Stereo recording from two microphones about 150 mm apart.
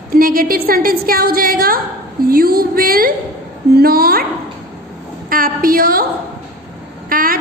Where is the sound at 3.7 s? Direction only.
85° right.